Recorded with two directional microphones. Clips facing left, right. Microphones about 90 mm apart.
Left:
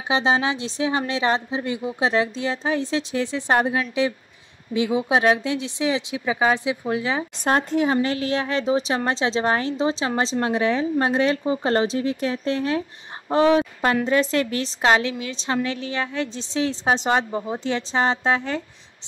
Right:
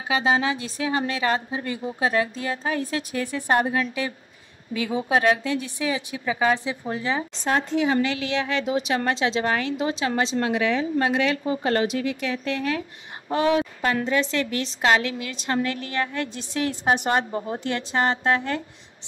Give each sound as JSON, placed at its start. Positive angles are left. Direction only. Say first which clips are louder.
{"t": 0.1, "sound": "a woman's voice", "louder": "left 1 dB", "side_deg": 25}
{"t": 7.3, "sound": "a woman's voice", "louder": "left 4 dB", "side_deg": 50}